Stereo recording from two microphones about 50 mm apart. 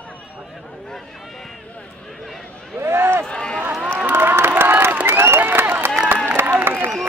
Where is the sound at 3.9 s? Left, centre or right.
Right.